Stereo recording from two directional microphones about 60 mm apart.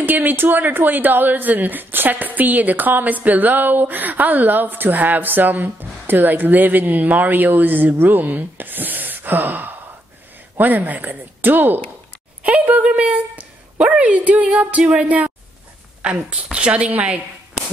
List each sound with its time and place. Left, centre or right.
0.0 s a woman's voice: right